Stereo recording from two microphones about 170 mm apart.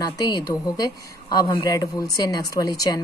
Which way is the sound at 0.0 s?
20° left (ahead or behind).